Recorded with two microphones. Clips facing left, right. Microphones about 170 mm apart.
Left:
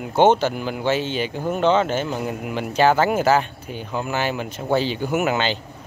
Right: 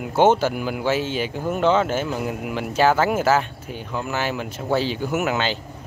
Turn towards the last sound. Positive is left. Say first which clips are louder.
# left 2 dB
turn(degrees=0)  # may be behind; listen again after turning